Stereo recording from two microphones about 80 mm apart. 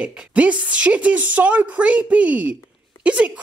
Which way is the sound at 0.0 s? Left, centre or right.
Centre.